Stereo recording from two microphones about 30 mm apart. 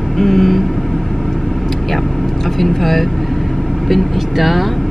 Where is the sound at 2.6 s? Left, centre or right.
Centre.